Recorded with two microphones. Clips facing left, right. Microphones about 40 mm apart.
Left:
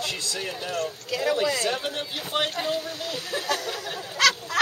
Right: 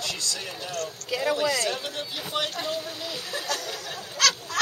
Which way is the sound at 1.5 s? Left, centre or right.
Centre.